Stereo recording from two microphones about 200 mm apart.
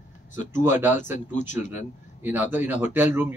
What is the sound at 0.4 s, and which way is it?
Speech, 40° left (ahead or behind).